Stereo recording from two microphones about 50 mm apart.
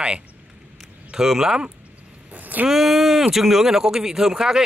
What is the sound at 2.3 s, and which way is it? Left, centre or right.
Vehicle, right.